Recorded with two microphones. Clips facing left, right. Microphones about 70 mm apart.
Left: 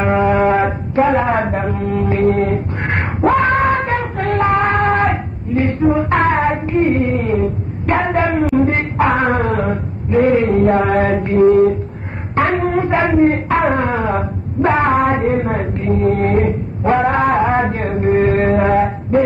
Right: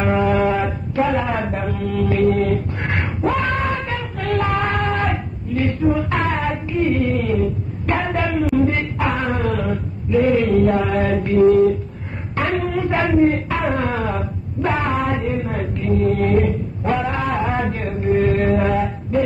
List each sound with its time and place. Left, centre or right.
0.0 s mantra: left
3.3 s wail: left
8.5 s a sound: left
10.3 s mantra: left
12.6 s a sound: left
14.6 s mantra: left